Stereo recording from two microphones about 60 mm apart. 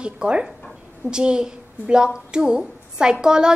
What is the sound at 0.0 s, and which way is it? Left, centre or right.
A woman's voice, centre.